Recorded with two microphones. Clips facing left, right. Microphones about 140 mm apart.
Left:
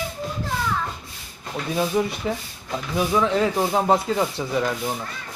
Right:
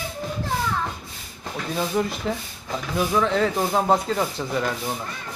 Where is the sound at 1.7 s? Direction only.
5° left (ahead or behind).